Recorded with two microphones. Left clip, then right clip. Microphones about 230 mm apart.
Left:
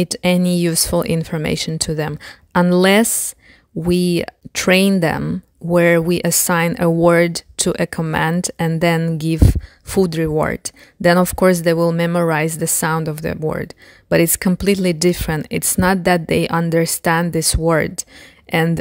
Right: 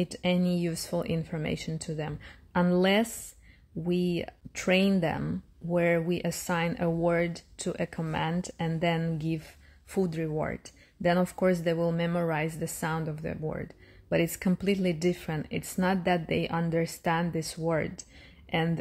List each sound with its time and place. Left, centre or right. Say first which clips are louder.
0.0 s speech: left 12 dB; left